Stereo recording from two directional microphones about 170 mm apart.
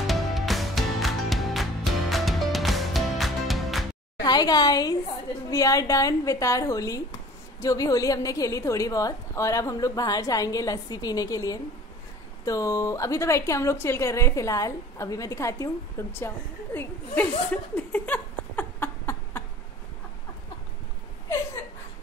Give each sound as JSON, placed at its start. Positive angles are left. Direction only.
{"t": 0.0, "sound": "music", "side_deg": 0}
{"t": 4.2, "sound": "a woman's voice", "side_deg": 25}